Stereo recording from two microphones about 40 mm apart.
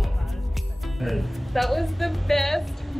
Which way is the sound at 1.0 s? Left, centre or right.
Centre.